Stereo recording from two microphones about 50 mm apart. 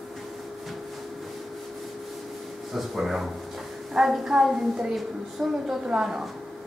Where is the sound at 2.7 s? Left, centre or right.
Centre.